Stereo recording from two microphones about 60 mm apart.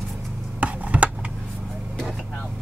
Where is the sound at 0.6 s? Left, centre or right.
Right.